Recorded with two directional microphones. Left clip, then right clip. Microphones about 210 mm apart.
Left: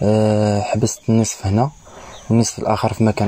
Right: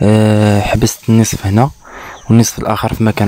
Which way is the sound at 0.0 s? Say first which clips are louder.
Right 4 dB; 30° right (ahead or behind).